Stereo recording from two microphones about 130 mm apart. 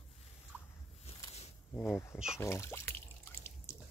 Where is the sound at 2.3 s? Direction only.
20° left (ahead or behind).